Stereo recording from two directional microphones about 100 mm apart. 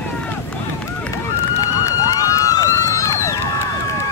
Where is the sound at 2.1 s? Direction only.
35° left (ahead or behind).